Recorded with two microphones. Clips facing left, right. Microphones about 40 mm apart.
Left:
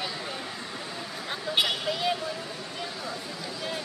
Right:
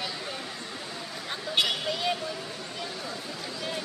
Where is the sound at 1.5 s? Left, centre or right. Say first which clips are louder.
Even; centre.